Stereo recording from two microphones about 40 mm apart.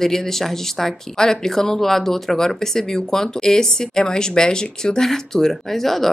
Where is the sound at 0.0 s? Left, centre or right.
Centre.